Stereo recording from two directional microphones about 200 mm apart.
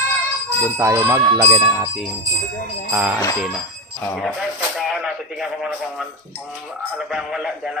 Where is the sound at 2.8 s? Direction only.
10° right (ahead or behind).